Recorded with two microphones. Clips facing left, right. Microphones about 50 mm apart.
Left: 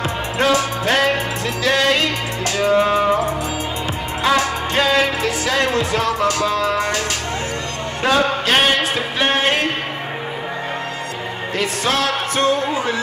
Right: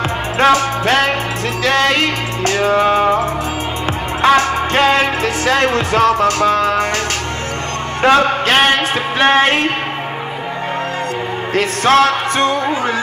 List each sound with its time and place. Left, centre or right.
0.4 s music: right
4.2 s music: right
8.0 s music: right
11.5 s music: right